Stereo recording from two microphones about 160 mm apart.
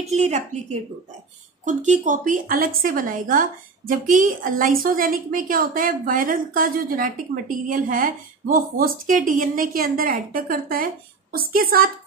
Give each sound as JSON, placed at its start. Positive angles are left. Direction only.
{"t": 0.0, "sound": "speech", "side_deg": -45}
{"t": 1.6, "sound": "a woman's voice", "side_deg": -50}